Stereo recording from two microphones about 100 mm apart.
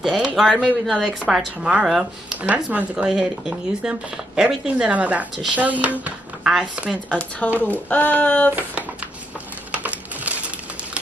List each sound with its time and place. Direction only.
0.0 s speech: 5° right (ahead or behind)
7.1 s speech: 10° left (ahead or behind)
9.7 s a sound: 15° right (ahead or behind)